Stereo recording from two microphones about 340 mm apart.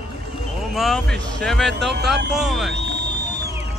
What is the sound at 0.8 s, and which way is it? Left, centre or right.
Music, centre.